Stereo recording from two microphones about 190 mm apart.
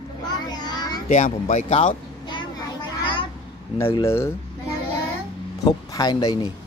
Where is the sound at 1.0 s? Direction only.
40° left (ahead or behind).